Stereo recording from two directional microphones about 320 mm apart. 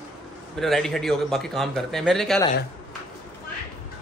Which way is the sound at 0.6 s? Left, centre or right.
Centre.